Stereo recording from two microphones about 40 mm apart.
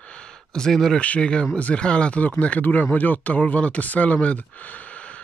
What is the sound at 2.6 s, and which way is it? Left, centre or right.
Speech, left.